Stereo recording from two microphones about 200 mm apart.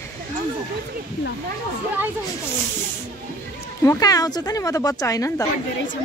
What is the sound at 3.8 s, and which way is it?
Speech, 15° left (ahead or behind).